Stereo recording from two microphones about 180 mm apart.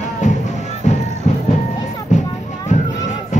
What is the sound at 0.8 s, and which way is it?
Music, 40° left (ahead or behind).